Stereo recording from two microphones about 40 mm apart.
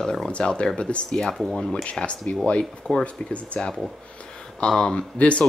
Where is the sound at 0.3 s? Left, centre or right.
Left.